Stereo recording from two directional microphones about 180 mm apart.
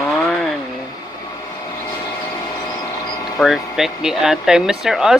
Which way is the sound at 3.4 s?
Centre (ahead or behind).